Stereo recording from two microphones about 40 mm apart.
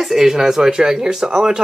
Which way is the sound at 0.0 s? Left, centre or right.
Centre.